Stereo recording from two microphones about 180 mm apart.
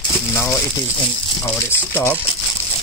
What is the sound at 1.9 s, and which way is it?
Speech, 10° left (ahead or behind).